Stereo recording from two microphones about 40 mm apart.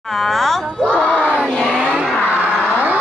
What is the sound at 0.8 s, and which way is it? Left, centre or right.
Crowd, left.